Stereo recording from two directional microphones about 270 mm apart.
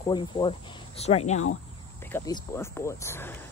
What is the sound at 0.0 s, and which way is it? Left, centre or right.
Speech, centre.